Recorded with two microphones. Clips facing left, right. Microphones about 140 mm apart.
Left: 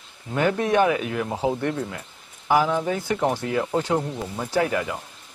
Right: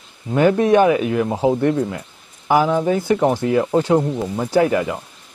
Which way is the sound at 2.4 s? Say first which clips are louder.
Right 5 dB; 35° right (ahead or behind).